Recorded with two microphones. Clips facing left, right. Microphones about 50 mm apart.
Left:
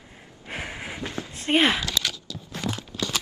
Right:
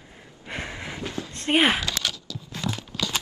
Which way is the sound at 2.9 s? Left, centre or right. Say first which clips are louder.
Right 2 dB; right.